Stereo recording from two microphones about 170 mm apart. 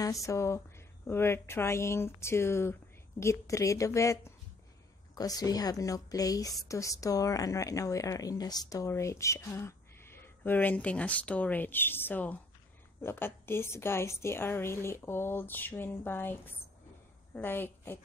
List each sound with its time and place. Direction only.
0.0 s a woman's voice: 20° left (ahead or behind)